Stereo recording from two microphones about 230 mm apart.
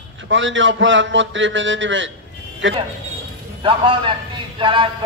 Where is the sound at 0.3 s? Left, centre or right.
Right.